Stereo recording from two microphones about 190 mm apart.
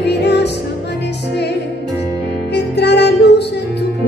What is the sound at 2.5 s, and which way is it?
Music, 60° left (ahead or behind).